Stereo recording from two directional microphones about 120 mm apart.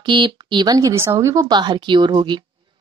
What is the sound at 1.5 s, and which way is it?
Speech, 40° right (ahead or behind).